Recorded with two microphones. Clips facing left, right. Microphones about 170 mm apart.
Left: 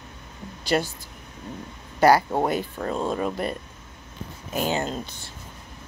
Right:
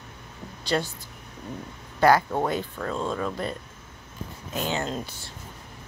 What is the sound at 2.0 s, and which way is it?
Speech, 10° left (ahead or behind).